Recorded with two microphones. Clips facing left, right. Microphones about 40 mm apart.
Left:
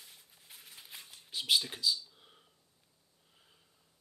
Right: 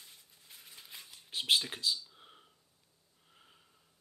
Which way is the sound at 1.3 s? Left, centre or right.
Right.